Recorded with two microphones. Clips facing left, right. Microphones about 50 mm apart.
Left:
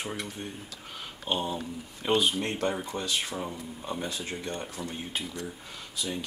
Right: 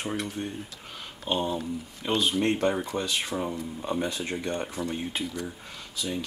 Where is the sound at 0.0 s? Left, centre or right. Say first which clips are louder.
Right 4 dB; centre.